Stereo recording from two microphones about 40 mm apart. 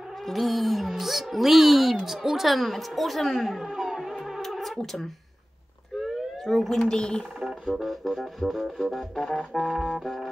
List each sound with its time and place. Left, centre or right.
0.3 s music: centre
2.0 s a woman's voice: centre
4.4 s music: centre
5.9 s a sound: centre
7.3 s music: centre